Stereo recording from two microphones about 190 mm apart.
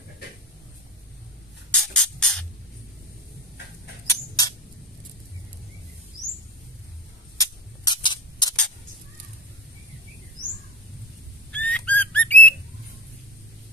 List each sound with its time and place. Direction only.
1.7 s music: 5° left (ahead or behind)
4.1 s mouse: 15° left (ahead or behind)
7.3 s a sound: 20° left (ahead or behind)
11.5 s bird: 5° left (ahead or behind)